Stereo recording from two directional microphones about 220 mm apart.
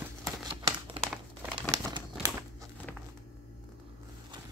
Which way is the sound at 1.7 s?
15° right (ahead or behind).